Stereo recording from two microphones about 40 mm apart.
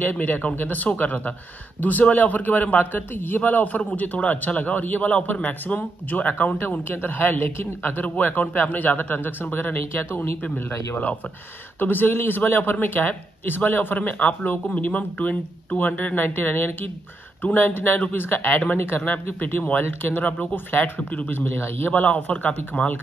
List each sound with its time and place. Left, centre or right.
0.0 s a man's voice: left
6.9 s a man's voice: left
10.5 s a man's voice: left
11.8 s speech: left
14.1 s a man's voice: left
19.8 s speech: left
22.0 s a man's voice: left